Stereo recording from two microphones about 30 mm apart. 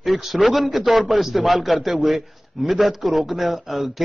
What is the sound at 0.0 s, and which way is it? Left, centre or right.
A man's voice, centre.